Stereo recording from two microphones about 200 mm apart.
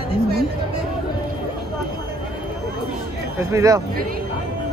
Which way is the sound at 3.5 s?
15° right (ahead or behind).